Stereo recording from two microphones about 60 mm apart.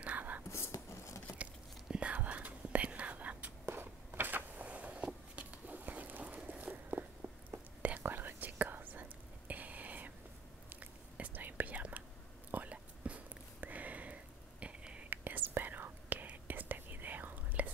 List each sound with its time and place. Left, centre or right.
0.0 s whispering: right
0.5 s whispering: left
1.3 s whispering: right
3.6 s a sound: right
7.8 s whispering: right
15.0 s whispering: right